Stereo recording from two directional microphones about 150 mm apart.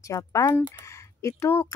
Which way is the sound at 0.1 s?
20° left (ahead or behind).